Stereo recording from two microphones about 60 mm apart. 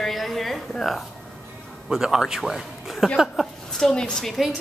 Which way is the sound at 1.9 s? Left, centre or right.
Centre.